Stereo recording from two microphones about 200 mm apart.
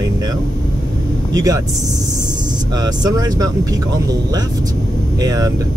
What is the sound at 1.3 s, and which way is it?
Speech, 15° right (ahead or behind).